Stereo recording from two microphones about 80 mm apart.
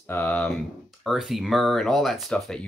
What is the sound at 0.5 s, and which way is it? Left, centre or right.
Speech, centre.